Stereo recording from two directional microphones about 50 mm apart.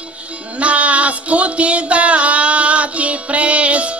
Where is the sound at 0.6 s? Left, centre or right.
Right.